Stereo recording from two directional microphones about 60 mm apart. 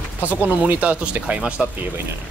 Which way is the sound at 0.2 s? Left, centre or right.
Right.